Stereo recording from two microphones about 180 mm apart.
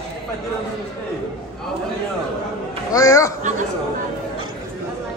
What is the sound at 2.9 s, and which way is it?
Speech, 20° left (ahead or behind).